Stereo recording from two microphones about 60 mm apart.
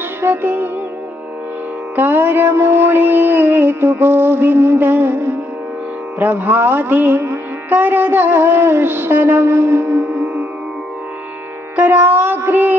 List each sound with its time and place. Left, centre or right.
0.2 s music: right
2.0 s music: right
7.7 s mantra: right
11.7 s music: right